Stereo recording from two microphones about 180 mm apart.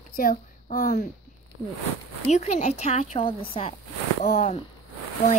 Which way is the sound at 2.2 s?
40° left (ahead or behind).